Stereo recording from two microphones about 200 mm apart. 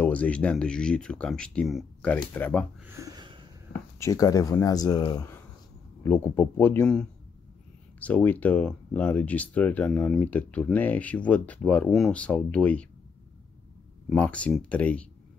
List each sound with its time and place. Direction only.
0.0 s speech: 5° left (ahead or behind)
2.9 s a sound: 15° right (ahead or behind)
4.0 s speech: 15° left (ahead or behind)
14.0 s speech: 5° left (ahead or behind)